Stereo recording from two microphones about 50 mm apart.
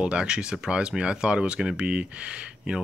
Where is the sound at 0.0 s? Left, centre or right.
Right.